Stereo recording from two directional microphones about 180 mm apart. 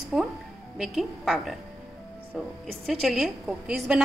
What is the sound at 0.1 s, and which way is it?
A woman's voice, centre (ahead or behind).